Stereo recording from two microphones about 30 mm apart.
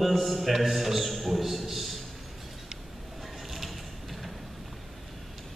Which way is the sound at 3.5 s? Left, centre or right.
Centre.